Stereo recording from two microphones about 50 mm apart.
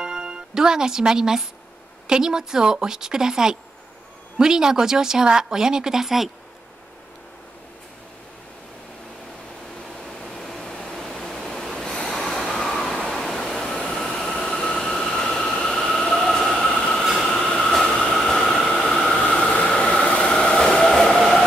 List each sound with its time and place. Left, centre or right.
0.0 s speech: centre
10.0 s a sound: centre
11.1 s waves: centre
14.9 s train: centre
16.7 s train: centre